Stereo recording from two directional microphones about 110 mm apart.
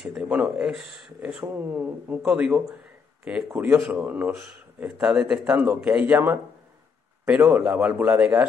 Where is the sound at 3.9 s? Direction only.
15° right (ahead or behind).